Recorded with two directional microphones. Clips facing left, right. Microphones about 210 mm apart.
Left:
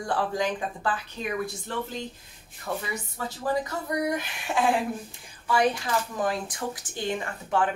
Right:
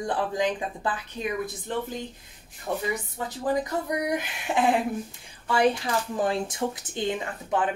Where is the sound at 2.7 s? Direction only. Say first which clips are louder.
Right 2 dB; 15° right (ahead or behind).